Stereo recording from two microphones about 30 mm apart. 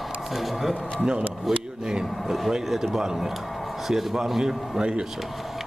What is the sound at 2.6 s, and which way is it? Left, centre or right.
A man's voice, centre.